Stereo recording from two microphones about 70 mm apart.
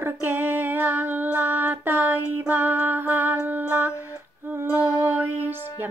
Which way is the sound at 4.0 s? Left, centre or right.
Right.